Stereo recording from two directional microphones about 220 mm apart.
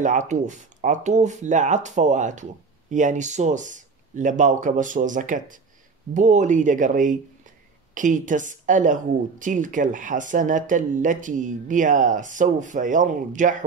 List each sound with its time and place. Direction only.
0.0 s speech: 35° right (ahead or behind)